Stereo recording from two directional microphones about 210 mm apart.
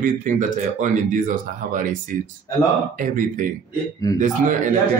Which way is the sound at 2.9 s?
40° right (ahead or behind).